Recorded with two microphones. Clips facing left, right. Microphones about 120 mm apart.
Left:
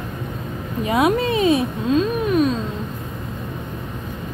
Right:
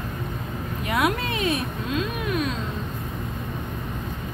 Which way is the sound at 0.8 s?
25° left (ahead or behind).